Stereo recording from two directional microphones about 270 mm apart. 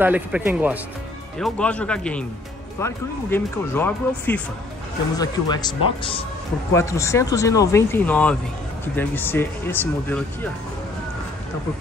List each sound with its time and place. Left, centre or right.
0.0 s a man's voice: centre
1.4 s speech: centre